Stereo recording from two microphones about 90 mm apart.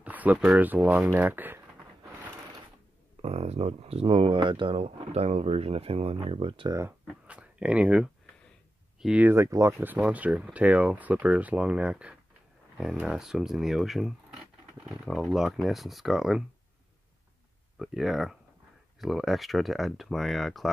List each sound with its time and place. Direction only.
0.0 s a sound: 15° right (ahead or behind)
0.5 s speech: 20° right (ahead or behind)
3.9 s speech: 90° right
7.2 s a sound: 15° right (ahead or behind)
9.0 s speech: 15° right (ahead or behind)
9.3 s speech: 30° right (ahead or behind)
9.8 s speech: 15° right (ahead or behind)
17.7 s speech: centre (ahead or behind)